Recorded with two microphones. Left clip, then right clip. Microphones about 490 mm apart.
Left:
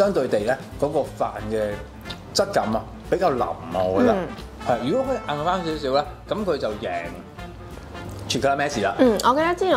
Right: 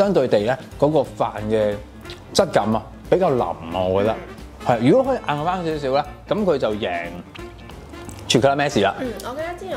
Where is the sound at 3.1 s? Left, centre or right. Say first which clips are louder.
Right 3 dB; right.